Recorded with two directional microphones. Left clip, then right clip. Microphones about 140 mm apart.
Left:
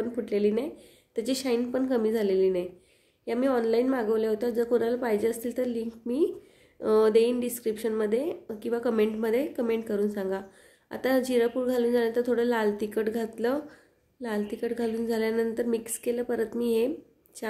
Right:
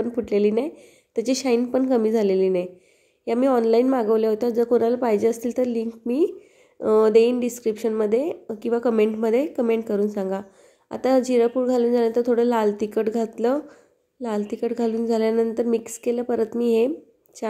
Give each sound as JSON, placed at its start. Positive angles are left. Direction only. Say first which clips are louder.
{"t": 0.0, "sound": "a woman's voice", "louder": "right 6 dB", "side_deg": -45}